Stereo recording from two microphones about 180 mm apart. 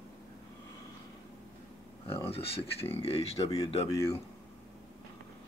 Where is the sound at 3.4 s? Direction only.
20° left (ahead or behind).